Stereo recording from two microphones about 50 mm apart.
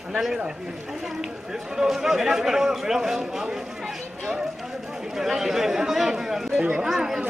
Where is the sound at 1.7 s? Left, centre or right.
Centre.